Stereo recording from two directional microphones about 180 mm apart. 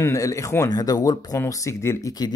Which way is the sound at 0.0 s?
15° left (ahead or behind).